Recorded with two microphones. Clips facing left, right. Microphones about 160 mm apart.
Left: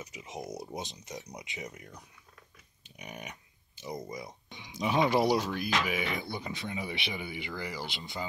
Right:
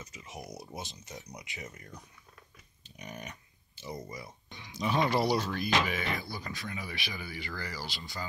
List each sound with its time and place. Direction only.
0.0 s speech: 15° left (ahead or behind)
2.8 s a sound: 10° left (ahead or behind)
4.1 s speech: 15° left (ahead or behind)
6.1 s speech: 20° left (ahead or behind)